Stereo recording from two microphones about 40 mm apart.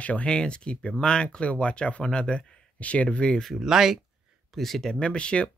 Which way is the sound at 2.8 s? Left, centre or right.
Left.